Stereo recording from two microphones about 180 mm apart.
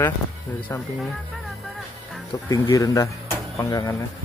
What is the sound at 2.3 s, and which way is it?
Speech, 20° left (ahead or behind).